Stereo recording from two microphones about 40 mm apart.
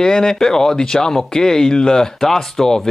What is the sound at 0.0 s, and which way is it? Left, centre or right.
A man's voice, centre.